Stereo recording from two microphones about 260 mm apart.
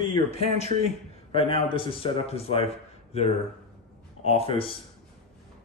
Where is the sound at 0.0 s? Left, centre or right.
Left.